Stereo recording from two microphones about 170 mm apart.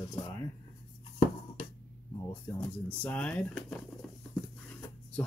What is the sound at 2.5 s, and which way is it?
Speech, 10° left (ahead or behind).